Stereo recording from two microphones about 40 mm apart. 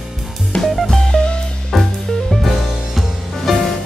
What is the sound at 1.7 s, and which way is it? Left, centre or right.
Music, centre.